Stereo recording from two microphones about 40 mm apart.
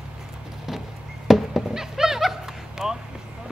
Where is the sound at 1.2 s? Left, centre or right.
Centre.